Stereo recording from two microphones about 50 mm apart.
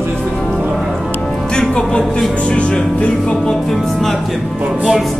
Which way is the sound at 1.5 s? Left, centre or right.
Centre.